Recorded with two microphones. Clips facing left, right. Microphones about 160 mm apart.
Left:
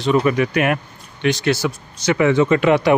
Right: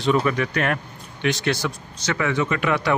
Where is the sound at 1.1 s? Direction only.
Centre (ahead or behind).